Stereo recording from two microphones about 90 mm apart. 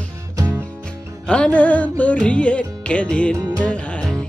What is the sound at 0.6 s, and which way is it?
Music, 10° left (ahead or behind).